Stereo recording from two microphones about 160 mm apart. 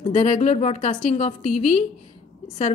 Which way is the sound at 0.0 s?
45° left (ahead or behind).